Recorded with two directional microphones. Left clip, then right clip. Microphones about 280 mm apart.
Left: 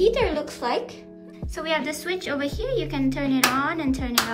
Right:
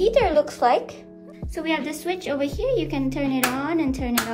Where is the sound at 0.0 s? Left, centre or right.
Centre.